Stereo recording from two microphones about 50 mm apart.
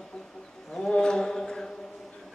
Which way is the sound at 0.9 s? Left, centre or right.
Centre.